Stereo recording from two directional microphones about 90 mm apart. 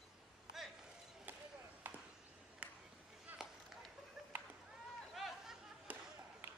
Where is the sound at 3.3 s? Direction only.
5° right (ahead or behind).